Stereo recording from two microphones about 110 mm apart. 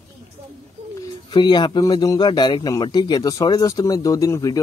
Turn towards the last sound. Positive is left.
turn(degrees=30)  # may be behind; listen again after turning